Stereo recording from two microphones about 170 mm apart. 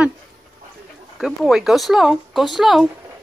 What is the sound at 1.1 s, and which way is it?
Speech, centre (ahead or behind).